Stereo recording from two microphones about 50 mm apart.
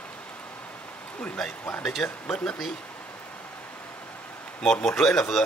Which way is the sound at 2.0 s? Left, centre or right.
Centre.